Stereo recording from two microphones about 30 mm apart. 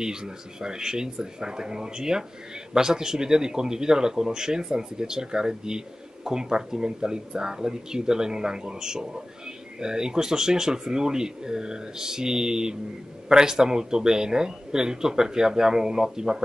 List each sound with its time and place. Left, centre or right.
0.0 s speech: right